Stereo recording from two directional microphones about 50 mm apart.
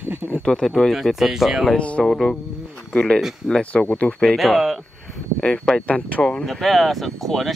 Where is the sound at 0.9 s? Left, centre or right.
Centre.